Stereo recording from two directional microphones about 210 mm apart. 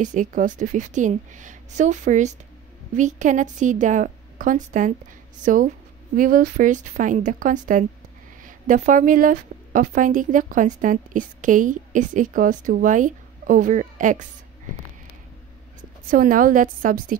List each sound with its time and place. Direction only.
0.0 s speech: 35° right (ahead or behind)
16.1 s speech: 40° right (ahead or behind)